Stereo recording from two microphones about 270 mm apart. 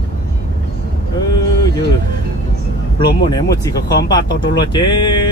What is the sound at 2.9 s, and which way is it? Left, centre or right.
Speech, centre.